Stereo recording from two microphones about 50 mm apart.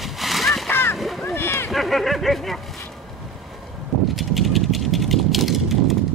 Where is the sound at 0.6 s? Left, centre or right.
Left.